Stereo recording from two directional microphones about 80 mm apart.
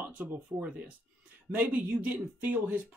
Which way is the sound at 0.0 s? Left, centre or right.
Right.